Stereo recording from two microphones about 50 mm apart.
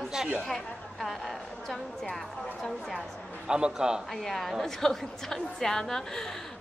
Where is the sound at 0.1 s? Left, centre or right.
Centre.